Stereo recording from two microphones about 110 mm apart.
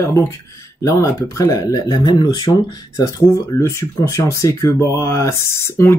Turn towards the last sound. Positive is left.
turn(degrees=25)  # may be behind; listen again after turning